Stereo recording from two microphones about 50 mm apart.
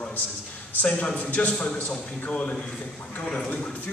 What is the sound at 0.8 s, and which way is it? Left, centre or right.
Speech, left.